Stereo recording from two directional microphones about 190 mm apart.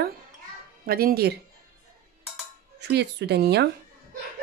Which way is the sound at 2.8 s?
65° right (ahead or behind).